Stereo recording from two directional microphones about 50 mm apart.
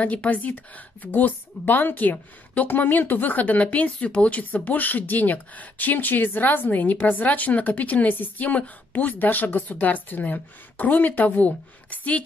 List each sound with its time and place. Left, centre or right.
0.0 s a woman's voice: left